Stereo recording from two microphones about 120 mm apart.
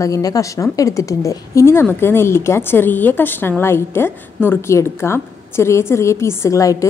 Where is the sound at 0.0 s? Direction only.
30° left (ahead or behind).